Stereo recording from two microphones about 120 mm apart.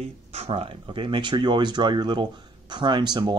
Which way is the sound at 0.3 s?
55° right (ahead or behind).